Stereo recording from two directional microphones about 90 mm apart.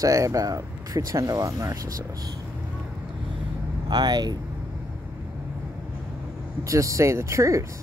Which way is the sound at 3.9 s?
55° right (ahead or behind).